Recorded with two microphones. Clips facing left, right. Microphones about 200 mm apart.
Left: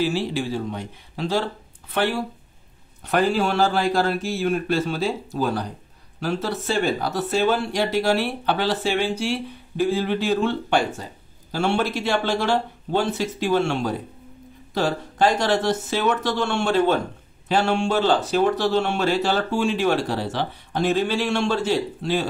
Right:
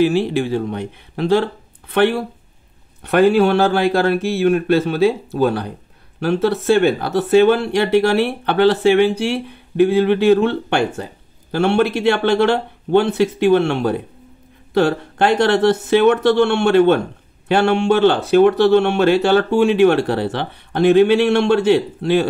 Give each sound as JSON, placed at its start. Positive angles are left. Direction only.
{"t": 0.0, "sound": "speech", "side_deg": -60}